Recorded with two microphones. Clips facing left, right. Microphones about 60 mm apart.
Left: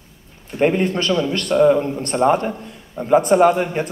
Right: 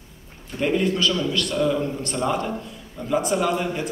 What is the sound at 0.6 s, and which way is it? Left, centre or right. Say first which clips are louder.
A man's voice: left 4 dB; left.